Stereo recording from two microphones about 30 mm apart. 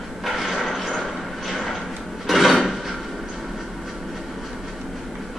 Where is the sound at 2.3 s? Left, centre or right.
Centre.